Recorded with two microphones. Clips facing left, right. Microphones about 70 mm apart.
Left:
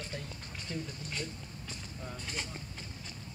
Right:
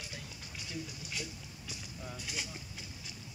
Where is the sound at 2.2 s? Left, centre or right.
Left.